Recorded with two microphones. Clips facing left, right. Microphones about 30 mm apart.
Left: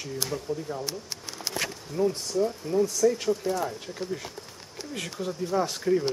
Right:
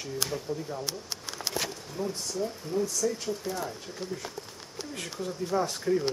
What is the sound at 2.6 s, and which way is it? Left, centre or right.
Speech, centre.